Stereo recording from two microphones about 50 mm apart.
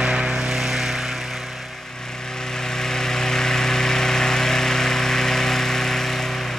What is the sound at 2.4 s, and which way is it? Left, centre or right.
Vehicle, centre.